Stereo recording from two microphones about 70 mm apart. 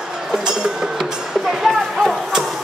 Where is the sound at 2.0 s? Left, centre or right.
Centre.